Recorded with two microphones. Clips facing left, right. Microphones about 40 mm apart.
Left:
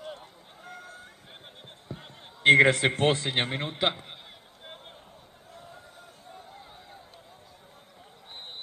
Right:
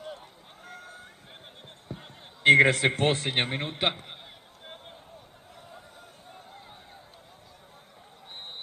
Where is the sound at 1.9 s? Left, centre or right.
Left.